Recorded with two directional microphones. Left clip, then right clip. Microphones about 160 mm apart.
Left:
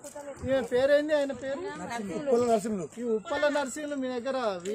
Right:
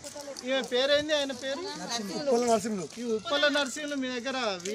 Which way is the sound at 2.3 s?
90° left.